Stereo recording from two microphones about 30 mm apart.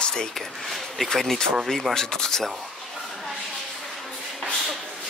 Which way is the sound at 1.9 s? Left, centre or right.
Left.